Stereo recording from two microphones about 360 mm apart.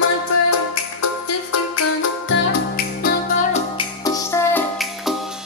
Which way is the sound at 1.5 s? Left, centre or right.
Left.